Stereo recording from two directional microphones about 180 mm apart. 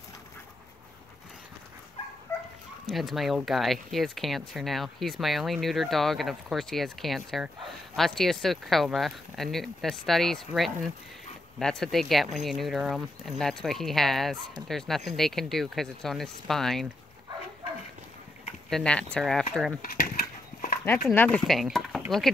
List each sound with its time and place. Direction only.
2.9 s speech: centre (ahead or behind)
18.7 s speech: 5° left (ahead or behind)
19.8 s dog: 50° left (ahead or behind)
20.8 s speech: 10° left (ahead or behind)